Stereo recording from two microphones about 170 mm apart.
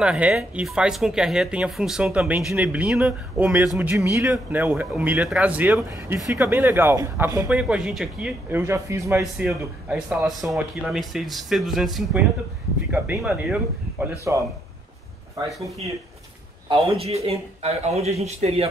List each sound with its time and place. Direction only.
0.0 s speech: 5° right (ahead or behind)
6.3 s speech: 15° right (ahead or behind)
9.4 s speech: 5° right (ahead or behind)
15.3 s speech: 20° right (ahead or behind)
16.6 s a man's voice: 30° right (ahead or behind)